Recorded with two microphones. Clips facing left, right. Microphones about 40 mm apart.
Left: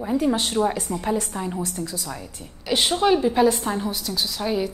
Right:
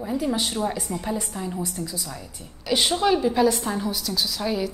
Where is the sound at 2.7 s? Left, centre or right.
Centre.